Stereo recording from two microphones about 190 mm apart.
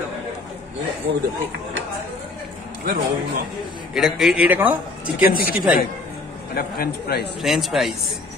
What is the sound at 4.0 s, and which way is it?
Speech, centre (ahead or behind).